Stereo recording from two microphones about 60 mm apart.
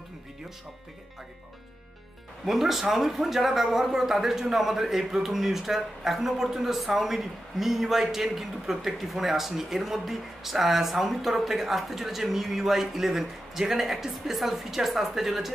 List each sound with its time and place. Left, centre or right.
2.4 s speech: centre